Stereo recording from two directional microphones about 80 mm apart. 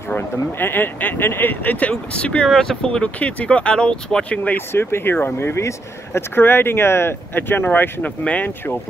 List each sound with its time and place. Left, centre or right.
0.1 s speech: left
4.6 s speech: left